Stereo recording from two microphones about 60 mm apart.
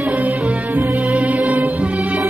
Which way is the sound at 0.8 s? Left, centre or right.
Right.